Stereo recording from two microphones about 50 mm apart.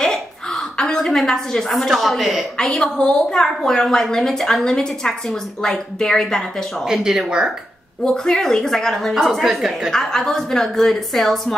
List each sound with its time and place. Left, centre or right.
0.7 s a woman's voice: centre
1.7 s speech: centre
2.5 s a woman's voice: centre
3.3 s a woman's voice: centre
6.9 s speech: centre
8.0 s a woman's voice: centre
9.9 s a woman's voice: centre